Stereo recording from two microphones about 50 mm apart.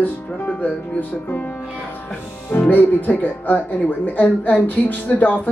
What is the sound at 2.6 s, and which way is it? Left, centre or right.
A woman's voice, left.